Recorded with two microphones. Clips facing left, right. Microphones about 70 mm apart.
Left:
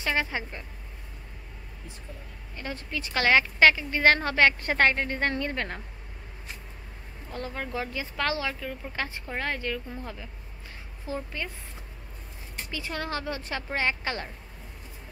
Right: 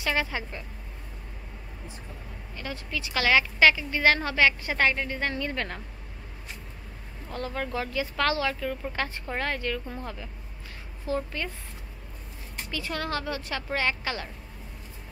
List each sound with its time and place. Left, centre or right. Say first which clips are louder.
0.0 s a woman's voice: even; left
2.5 s a woman's voice: even; left
7.3 s a woman's voice: right 2 dB; left
8.5 s speech: right 5 dB; centre
8.9 s speech: right 2 dB; centre
11.1 s speech: right 4 dB; centre
12.7 s a woman's voice: right 2 dB; left